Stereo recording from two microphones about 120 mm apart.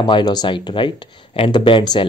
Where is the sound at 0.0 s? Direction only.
35° left (ahead or behind).